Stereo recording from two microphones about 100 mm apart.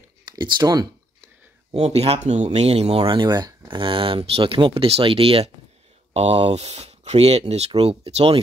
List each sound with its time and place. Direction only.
0.2 s a sound: 45° right (ahead or behind)
1.7 s speech: 90° right
3.2 s speech: 45° right (ahead or behind); by 5.5 s 70° right (ahead or behind)
6.1 s speech: 90° right
7.8 s speech: 75° right (ahead or behind)